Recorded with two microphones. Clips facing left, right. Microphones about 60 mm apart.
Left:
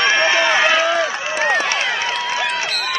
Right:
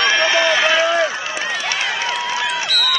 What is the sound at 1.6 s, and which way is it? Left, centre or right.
Run, left.